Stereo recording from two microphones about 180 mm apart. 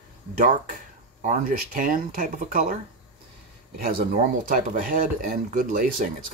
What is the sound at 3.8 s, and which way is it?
Speech, 50° right (ahead or behind).